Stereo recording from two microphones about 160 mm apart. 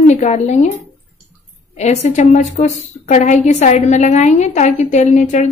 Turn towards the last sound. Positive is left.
turn(degrees=45)  # may be behind; listen again after turning